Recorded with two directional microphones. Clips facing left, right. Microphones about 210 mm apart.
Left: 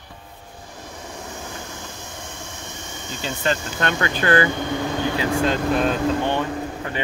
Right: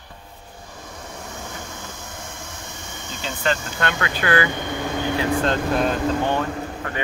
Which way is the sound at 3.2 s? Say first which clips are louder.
Even; 20° left (ahead or behind).